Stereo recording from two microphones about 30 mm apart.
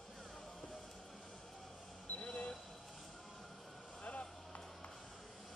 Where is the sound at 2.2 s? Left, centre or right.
Left.